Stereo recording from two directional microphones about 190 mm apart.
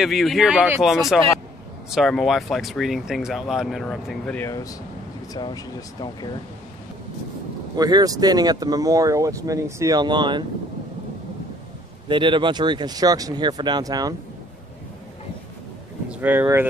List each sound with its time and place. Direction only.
0.0 s speech: centre (ahead or behind)
4.5 s speech: 20° left (ahead or behind)
7.7 s speech: 20° right (ahead or behind)
12.1 s speech: 25° right (ahead or behind)
16.1 s speech: 10° right (ahead or behind)